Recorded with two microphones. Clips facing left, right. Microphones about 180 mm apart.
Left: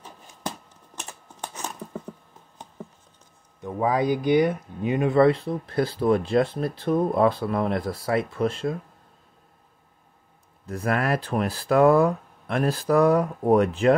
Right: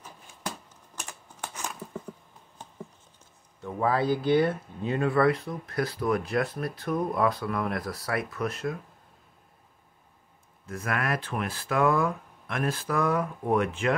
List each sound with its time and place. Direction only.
0.9 s typewriter: 20° left (ahead or behind)
3.6 s speech: 15° left (ahead or behind)
10.7 s speech: 35° left (ahead or behind)